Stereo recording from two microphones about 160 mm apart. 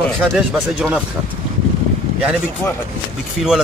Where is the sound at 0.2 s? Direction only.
Centre (ahead or behind).